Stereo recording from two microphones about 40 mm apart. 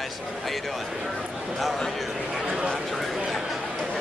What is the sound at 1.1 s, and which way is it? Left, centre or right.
Speech, centre.